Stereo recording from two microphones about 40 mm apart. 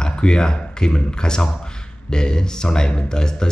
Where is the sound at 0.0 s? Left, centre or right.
Left.